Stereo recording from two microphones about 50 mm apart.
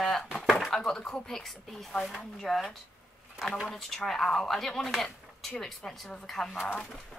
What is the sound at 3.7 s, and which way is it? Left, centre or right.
A woman's voice, centre.